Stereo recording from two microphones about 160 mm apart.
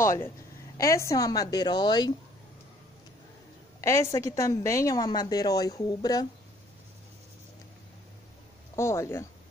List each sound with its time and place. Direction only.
0.0 s a woman's voice: 15° left (ahead or behind)
3.8 s a woman's voice: 15° left (ahead or behind)
8.7 s speech: 15° left (ahead or behind)